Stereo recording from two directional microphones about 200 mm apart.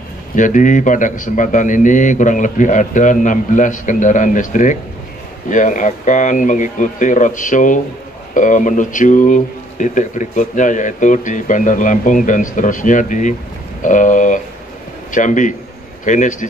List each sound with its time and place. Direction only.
0.4 s speech: 40° left (ahead or behind)